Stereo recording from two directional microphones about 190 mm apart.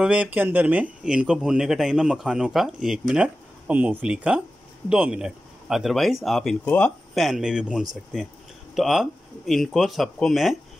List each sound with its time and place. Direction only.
0.0 s speech: 5° right (ahead or behind)